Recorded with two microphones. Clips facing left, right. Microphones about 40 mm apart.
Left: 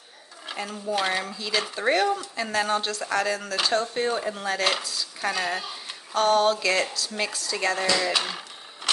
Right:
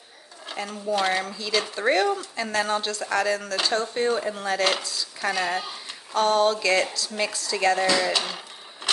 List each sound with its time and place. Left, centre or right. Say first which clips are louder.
0.5 s speech: right 2 dB; centre